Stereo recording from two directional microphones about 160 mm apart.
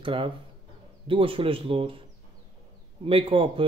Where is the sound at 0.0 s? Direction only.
35° right (ahead or behind).